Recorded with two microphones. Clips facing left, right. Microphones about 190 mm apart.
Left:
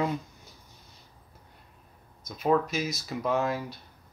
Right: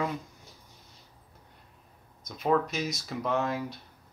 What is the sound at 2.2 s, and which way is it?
Speech, 5° left (ahead or behind).